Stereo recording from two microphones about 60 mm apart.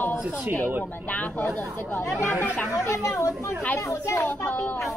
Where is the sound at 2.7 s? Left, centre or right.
Left.